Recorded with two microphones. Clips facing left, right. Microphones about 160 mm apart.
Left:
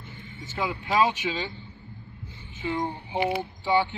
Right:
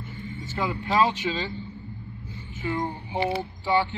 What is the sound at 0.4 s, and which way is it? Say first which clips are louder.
A man's voice: right 1 dB; 10° left (ahead or behind).